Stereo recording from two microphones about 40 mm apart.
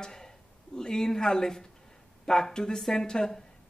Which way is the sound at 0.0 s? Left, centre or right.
Centre.